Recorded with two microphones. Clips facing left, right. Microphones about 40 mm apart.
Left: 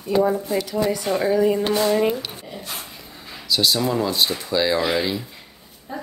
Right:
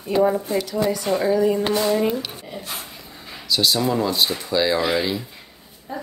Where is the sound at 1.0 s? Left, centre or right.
Centre.